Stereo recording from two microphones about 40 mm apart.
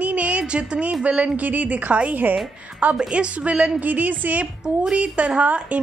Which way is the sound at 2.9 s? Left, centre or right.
Right.